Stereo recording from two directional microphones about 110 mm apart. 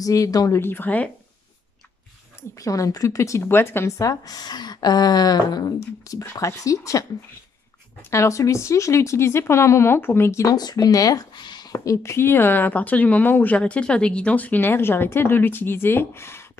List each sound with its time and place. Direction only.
0.0 s speech: 30° left (ahead or behind)
0.6 s speech: 20° left (ahead or behind)
2.6 s speech: 30° left (ahead or behind)
8.1 s speech: 25° left (ahead or behind)
11.7 s speech: 30° left (ahead or behind)